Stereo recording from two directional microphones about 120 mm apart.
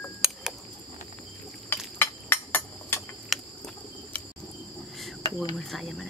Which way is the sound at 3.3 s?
Centre (ahead or behind).